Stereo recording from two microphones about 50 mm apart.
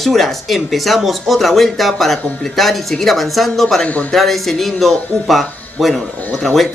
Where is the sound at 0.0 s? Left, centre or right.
Centre.